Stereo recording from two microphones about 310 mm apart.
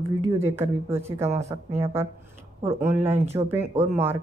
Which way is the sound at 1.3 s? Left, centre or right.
Right.